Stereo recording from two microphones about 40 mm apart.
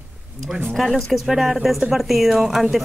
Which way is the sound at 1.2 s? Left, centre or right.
Centre.